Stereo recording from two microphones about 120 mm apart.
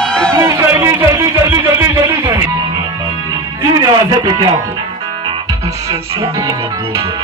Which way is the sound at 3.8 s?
35° right (ahead or behind).